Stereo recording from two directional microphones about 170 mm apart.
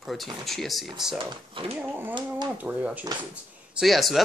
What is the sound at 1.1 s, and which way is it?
Speech, 30° right (ahead or behind).